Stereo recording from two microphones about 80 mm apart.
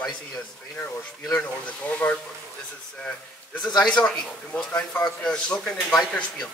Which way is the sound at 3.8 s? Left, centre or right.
Centre.